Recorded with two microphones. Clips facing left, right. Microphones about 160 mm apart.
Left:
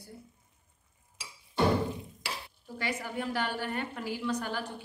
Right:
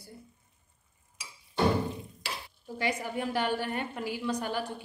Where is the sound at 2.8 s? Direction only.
15° right (ahead or behind).